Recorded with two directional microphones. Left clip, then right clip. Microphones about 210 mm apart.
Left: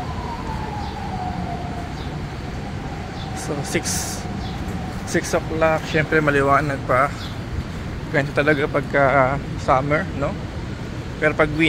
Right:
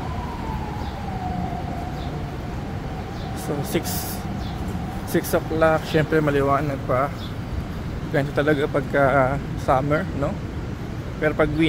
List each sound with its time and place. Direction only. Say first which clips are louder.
5.1 s speech: left 1 dB; 20° right (ahead or behind)
6.1 s speech: left 5 dB; 5° right (ahead or behind)
8.1 s speech: left 2 dB; 10° right (ahead or behind)